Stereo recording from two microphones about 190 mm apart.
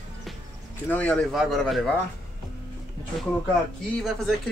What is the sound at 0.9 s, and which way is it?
Speech, 5° left (ahead or behind).